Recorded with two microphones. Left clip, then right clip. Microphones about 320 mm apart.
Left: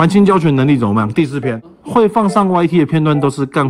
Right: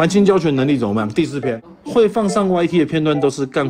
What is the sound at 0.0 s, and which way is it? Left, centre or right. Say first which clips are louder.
Speech: left 2 dB; centre.